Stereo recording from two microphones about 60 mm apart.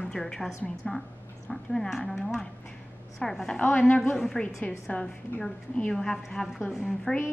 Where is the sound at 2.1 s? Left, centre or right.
Centre.